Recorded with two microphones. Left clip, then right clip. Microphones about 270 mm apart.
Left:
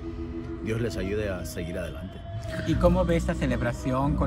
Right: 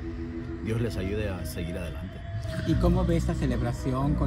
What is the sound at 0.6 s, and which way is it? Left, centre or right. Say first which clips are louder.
Speech: left 2 dB; centre.